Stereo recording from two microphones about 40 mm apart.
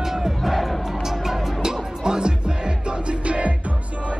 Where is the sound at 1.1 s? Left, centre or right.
Centre.